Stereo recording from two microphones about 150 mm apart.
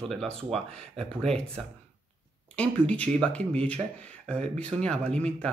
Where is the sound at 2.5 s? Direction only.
10° left (ahead or behind).